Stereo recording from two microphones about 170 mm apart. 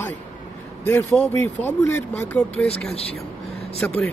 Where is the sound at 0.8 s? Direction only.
10° left (ahead or behind).